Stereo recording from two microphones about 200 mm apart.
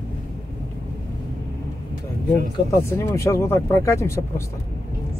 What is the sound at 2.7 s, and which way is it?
Speech, 15° left (ahead or behind).